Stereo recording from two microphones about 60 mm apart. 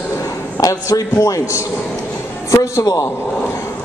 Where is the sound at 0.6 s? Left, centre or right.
Left.